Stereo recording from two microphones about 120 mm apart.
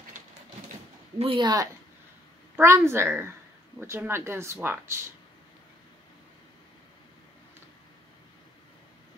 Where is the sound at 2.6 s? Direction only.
20° right (ahead or behind).